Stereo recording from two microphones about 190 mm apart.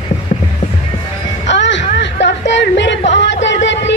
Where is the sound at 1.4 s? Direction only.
70° left (ahead or behind).